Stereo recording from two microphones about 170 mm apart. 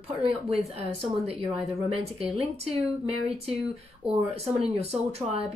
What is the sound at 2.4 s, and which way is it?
Speech, 35° right (ahead or behind).